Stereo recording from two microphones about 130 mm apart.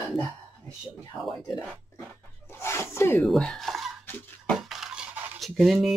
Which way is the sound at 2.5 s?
20° left (ahead or behind).